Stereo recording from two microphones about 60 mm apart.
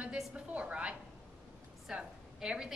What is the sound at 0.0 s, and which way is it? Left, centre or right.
A woman's voice, right.